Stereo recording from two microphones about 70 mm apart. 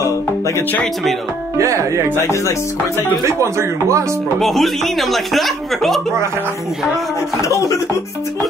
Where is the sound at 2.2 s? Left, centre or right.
Left.